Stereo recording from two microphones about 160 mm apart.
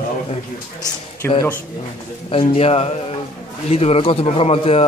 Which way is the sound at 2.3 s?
35° left (ahead or behind).